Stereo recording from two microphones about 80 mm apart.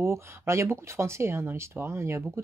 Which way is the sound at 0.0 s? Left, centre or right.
Right.